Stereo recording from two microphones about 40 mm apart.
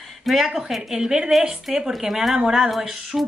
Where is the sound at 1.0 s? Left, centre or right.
Centre.